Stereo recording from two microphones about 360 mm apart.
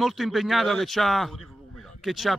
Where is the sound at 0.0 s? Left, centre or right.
Centre.